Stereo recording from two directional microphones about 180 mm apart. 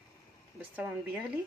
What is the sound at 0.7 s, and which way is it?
Speech, 10° right (ahead or behind).